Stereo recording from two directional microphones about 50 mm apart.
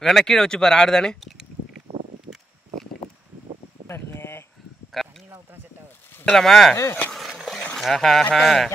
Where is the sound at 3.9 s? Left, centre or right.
Left.